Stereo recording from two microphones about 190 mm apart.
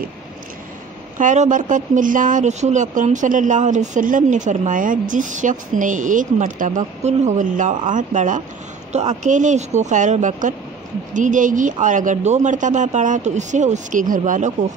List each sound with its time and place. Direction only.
1.1 s speech: 40° right (ahead or behind)